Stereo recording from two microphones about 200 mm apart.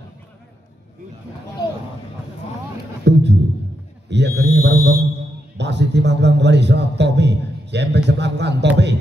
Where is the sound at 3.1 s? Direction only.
55° right (ahead or behind).